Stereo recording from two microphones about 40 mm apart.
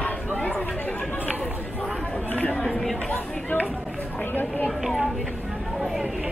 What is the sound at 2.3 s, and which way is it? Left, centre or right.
Chatter, left.